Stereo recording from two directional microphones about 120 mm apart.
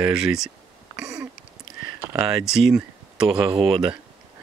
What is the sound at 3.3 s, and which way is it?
Speech, 50° right (ahead or behind).